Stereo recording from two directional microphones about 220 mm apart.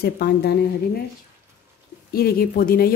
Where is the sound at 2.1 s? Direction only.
40° left (ahead or behind).